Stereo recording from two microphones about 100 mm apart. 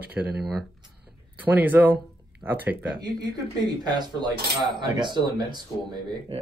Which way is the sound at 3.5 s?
45° right (ahead or behind).